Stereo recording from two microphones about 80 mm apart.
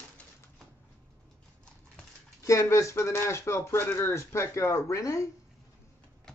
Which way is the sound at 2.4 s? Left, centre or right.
Left.